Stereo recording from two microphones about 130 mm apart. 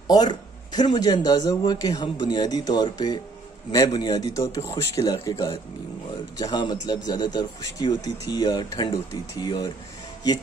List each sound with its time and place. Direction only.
0.1 s a man's voice: 30° left (ahead or behind)